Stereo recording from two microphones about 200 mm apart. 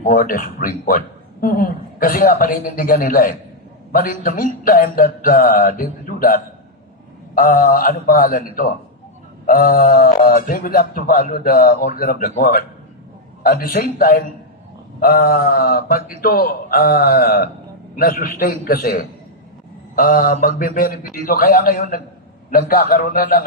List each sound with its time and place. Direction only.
0.0 s a man's voice: 45° left (ahead or behind)
20.0 s a man's voice: 45° left (ahead or behind)